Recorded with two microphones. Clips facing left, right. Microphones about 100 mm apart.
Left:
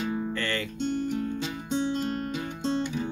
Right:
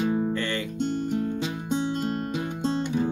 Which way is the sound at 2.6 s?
45° right (ahead or behind).